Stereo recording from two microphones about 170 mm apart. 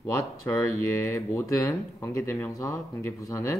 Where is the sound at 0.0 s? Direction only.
15° left (ahead or behind).